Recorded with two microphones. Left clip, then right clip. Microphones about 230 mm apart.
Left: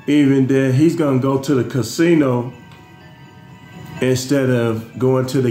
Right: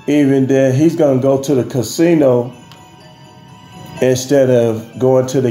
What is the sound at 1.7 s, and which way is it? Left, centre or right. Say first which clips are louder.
Speech: right 3 dB; left.